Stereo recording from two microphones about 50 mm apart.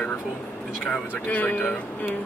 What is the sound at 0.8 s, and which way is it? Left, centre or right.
Speech, left.